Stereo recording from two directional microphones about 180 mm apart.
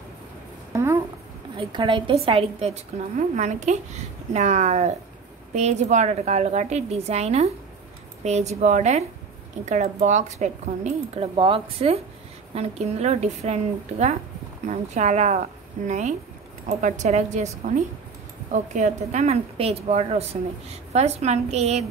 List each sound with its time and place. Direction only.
0.7 s a sound: 15° right (ahead or behind)
1.6 s a woman's voice: 30° right (ahead or behind)
18.5 s a woman's voice: 40° right (ahead or behind)